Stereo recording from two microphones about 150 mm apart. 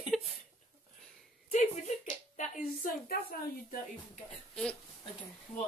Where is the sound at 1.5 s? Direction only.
55° left (ahead or behind).